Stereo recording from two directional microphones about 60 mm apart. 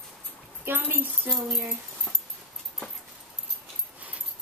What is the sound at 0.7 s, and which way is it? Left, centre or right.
Speech, right.